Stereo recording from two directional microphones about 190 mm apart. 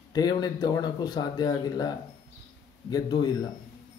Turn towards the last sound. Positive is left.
turn(degrees=20)  # may be behind; listen again after turning